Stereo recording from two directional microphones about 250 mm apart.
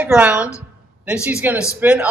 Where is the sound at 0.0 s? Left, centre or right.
Centre.